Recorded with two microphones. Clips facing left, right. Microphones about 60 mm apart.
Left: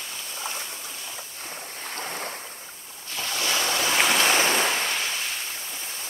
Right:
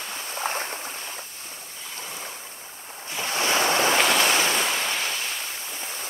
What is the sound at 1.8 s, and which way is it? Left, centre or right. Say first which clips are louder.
Waves: left 4 dB; left.